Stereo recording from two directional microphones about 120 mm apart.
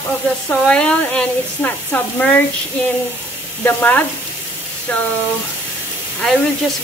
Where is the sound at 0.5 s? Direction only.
5° left (ahead or behind).